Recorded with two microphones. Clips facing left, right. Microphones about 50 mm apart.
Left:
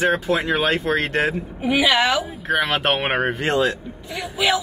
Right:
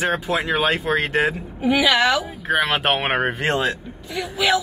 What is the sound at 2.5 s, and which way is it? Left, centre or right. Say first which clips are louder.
Speech: right 1 dB; centre.